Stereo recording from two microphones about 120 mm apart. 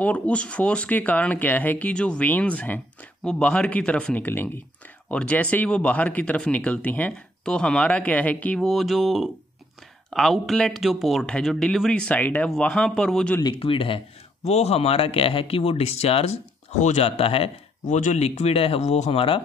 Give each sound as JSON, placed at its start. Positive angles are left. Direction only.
{"t": 0.0, "sound": "speech", "side_deg": 10}
{"t": 8.5, "sound": "speech", "side_deg": 0}
{"t": 13.4, "sound": "speech", "side_deg": 40}
{"t": 16.7, "sound": "speech", "side_deg": 75}
{"t": 17.8, "sound": "speech", "side_deg": 85}